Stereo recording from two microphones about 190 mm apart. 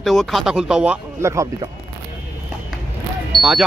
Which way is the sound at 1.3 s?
15° right (ahead or behind).